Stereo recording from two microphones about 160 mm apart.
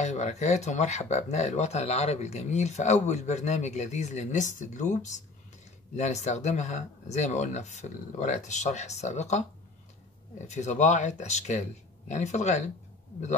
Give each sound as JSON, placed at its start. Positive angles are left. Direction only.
{"t": 0.0, "sound": "speech", "side_deg": 45}
{"t": 10.4, "sound": "speech", "side_deg": 45}